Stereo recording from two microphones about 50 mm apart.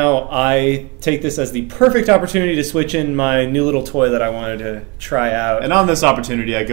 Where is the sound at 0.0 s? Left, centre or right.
Centre.